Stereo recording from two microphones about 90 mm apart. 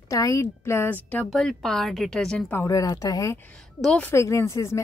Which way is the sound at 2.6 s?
40° left (ahead or behind).